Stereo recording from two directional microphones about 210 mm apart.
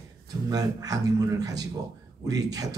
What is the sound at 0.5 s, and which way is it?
A man's voice, 15° right (ahead or behind).